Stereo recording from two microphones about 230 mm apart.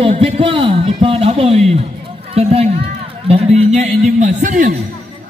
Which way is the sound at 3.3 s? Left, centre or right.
Right.